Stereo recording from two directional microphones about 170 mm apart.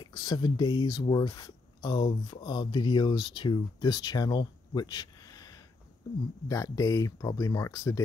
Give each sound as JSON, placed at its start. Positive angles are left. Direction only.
{"t": 0.0, "sound": "speech", "side_deg": 25}